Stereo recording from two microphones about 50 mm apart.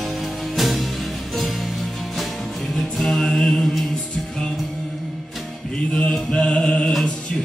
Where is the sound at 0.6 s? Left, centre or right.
Centre.